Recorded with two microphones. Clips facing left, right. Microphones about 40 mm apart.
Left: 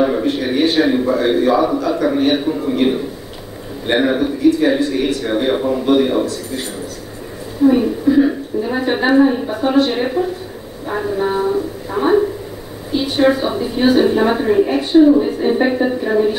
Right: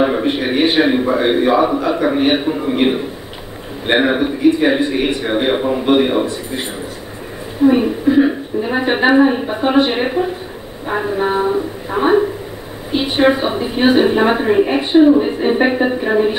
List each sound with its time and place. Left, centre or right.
0.0 s a woman's voice: right
7.6 s a woman's voice: right